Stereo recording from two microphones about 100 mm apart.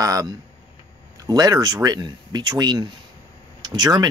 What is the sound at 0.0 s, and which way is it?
Speech, 35° right (ahead or behind).